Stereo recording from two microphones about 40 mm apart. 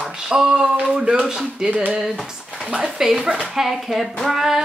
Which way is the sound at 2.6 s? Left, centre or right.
Right.